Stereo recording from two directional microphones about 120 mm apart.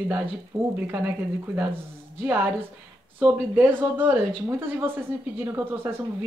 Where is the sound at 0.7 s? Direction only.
15° right (ahead or behind).